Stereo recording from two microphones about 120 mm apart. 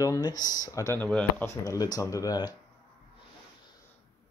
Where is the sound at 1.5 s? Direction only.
30° left (ahead or behind).